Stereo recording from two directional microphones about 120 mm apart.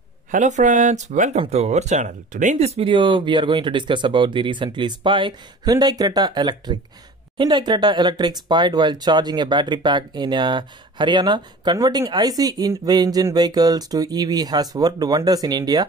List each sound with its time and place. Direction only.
0.3 s speech: 90° right
1.4 s speech: 60° right (ahead or behind)
2.9 s speech: 45° right (ahead or behind)